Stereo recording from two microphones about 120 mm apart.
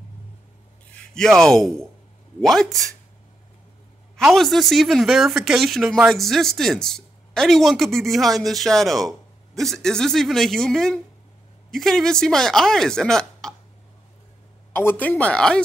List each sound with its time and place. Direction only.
0.9 s speech: 5° left (ahead or behind)
4.2 s speech: centre (ahead or behind)
14.7 s speech: 15° left (ahead or behind)